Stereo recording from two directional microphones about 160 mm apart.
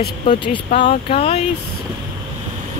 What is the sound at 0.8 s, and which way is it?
Speech, 35° left (ahead or behind).